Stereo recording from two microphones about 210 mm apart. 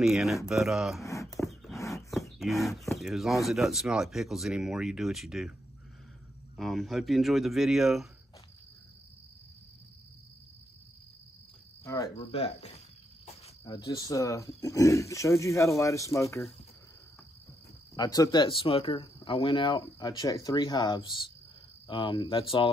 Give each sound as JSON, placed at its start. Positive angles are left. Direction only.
{"t": 0.0, "sound": "speech", "side_deg": 0}
{"t": 1.0, "sound": "a sound", "side_deg": 15}
{"t": 1.5, "sound": "a sound", "side_deg": 0}
{"t": 1.8, "sound": "a sound", "side_deg": 15}
{"t": 2.0, "sound": "speech", "side_deg": 0}
{"t": 6.5, "sound": "speech", "side_deg": 0}
{"t": 11.8, "sound": "cricket", "side_deg": 15}
{"t": 12.2, "sound": "cricket", "side_deg": 30}
{"t": 17.9, "sound": "speech", "side_deg": 15}